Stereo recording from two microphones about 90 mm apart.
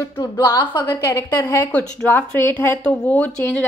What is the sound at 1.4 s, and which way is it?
A woman's voice, 20° left (ahead or behind).